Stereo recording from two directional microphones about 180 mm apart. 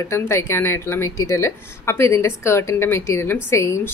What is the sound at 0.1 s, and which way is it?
Speech, 15° left (ahead or behind).